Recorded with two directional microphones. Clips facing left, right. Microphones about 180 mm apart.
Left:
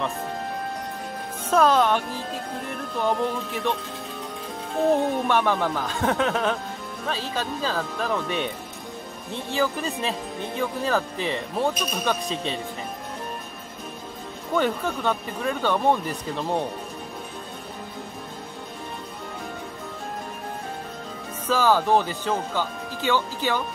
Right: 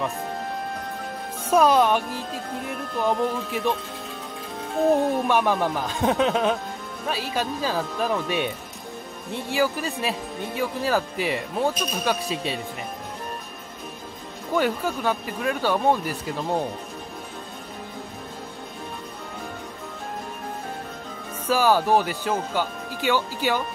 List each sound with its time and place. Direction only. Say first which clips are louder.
1.5 s speech: right 1 dB; 10° right (ahead or behind)
4.7 s speech: right 1 dB; centre (ahead or behind)
5.3 s speech: right 1 dB; 10° right (ahead or behind)
11.5 s speech: even; centre (ahead or behind)
14.5 s speech: right 1 dB; 5° right (ahead or behind)
21.5 s speech: right 1 dB; 10° right (ahead or behind)